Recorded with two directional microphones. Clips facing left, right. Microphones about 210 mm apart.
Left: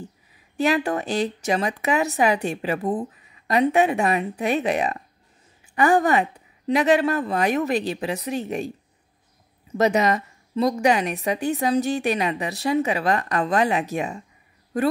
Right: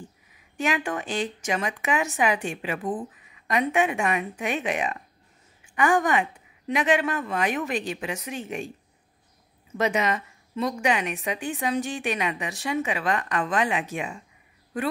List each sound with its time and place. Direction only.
0.6 s a woman's voice: 35° left (ahead or behind)
9.8 s a woman's voice: 40° left (ahead or behind)